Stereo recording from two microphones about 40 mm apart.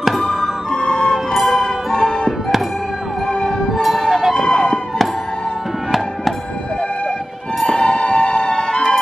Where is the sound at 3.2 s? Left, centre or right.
Centre.